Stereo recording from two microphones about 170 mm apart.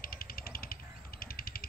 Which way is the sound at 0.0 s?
60° left (ahead or behind).